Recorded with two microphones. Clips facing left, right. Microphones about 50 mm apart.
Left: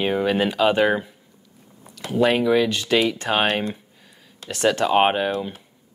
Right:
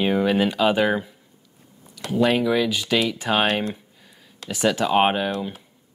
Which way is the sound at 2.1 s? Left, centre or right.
Centre.